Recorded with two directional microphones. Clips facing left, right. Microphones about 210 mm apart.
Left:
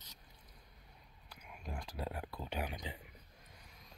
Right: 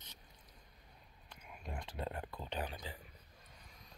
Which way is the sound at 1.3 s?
Centre (ahead or behind).